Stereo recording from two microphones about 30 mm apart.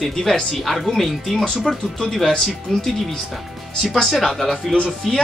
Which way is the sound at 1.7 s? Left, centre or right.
Centre.